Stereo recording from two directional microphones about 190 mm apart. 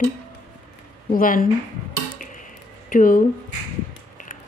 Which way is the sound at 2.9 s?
45° left (ahead or behind).